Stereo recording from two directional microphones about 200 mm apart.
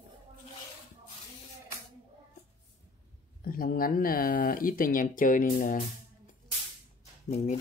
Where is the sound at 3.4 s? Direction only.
45° left (ahead or behind).